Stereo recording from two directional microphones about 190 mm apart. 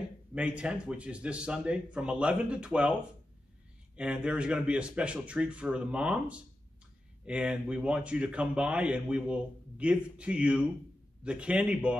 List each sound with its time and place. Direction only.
0.3 s speech: 5° right (ahead or behind)